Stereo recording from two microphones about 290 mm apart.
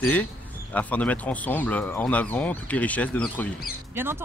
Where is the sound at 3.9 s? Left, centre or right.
Centre.